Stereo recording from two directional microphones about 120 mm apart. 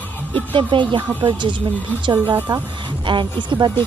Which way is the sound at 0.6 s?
40° right (ahead or behind).